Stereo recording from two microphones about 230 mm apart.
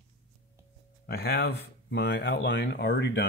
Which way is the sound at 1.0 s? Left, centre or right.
Left.